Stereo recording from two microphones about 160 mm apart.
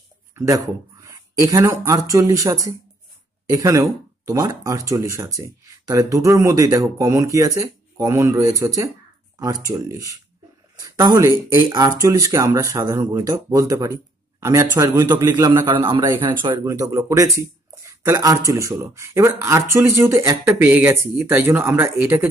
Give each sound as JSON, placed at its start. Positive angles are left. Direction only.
{"t": 0.4, "sound": "a man's voice", "side_deg": -20}